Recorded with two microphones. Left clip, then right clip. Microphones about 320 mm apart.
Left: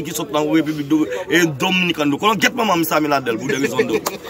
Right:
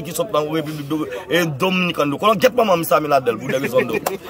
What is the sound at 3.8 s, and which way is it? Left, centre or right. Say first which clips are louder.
Speech: even; right.